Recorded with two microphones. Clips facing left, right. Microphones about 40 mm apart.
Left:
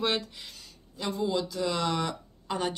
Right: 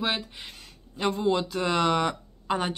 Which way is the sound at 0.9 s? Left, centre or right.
Right.